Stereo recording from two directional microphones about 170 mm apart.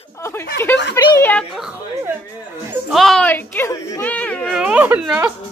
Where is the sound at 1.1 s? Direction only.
10° left (ahead or behind).